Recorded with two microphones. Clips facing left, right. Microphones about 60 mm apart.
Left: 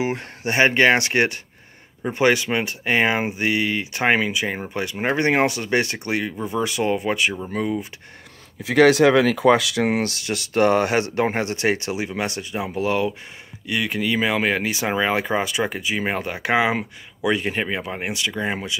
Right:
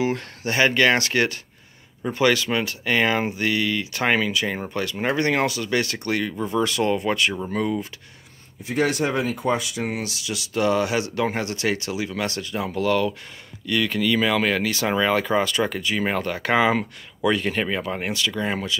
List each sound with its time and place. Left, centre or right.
0.0 s speech: left; by 7.9 s centre
8.6 s speech: left; by 18.8 s centre